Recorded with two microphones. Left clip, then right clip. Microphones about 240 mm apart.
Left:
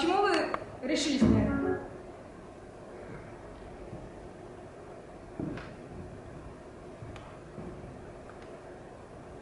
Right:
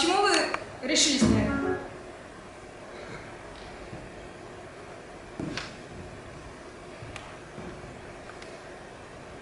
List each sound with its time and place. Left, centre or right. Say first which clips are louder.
0.0 s music: right 3 dB; centre